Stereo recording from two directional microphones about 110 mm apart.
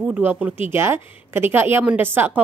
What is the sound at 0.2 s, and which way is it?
A woman's voice, 15° right (ahead or behind).